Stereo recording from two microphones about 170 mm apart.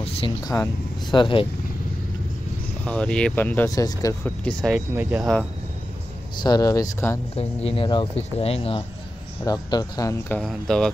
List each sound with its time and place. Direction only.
0.0 s a sound: 35° left (ahead or behind)
0.5 s speech: 20° left (ahead or behind)
1.1 s speech: 30° left (ahead or behind)
2.8 s speech: 5° left (ahead or behind)
4.5 s speech: centre (ahead or behind)
4.9 s speech: 10° right (ahead or behind)
6.4 s speech: 20° left (ahead or behind)
7.3 s speech: 35° left (ahead or behind)
9.4 s speech: 20° left (ahead or behind); by 10.9 s 5° left (ahead or behind)